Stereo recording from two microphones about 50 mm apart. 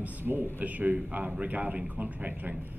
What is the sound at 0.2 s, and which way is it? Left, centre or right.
Speech, right.